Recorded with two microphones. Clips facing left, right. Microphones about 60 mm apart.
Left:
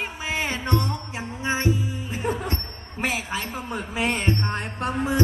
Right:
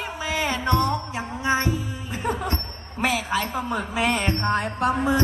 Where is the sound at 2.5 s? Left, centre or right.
Left.